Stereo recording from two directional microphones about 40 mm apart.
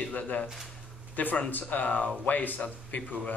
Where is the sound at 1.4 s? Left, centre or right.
Left.